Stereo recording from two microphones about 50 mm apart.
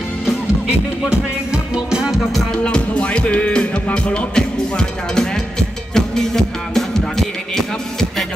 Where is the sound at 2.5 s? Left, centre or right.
Left.